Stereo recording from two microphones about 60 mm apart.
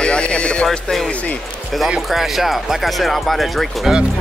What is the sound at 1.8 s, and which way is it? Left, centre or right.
Speech, centre.